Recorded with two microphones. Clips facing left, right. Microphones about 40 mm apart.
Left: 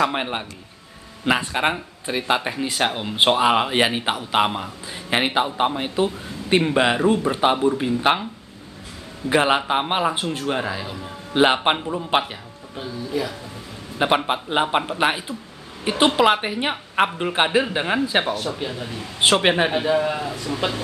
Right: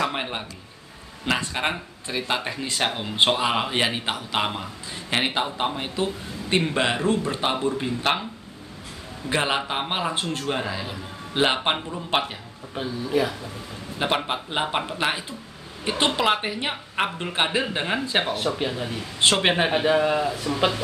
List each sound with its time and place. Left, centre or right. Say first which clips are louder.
0.0 s speech: left 4 dB; centre
9.3 s speech: left 6 dB; centre
13.9 s speech: left 5 dB; centre
18.3 s speech: right 1 dB; right
19.1 s speech: left 3 dB; centre
20.2 s speech: right 2 dB; right